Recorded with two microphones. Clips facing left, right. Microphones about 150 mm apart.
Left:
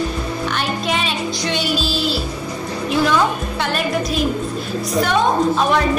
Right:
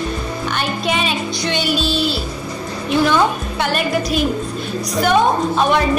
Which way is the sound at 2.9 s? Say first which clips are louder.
Right 2 dB; centre (ahead or behind).